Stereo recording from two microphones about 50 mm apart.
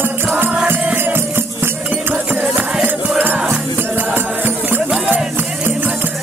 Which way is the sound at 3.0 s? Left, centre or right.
Right.